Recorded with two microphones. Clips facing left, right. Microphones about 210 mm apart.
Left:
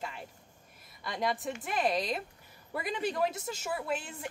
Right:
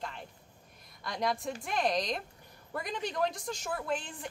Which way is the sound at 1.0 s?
Centre (ahead or behind).